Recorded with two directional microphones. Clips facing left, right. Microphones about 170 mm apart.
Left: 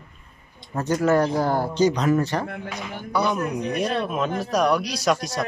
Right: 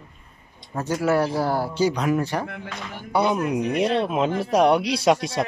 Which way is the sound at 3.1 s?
25° right (ahead or behind).